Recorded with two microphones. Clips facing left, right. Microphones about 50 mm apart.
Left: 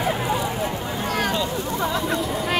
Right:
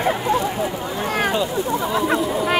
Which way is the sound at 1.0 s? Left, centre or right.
Right.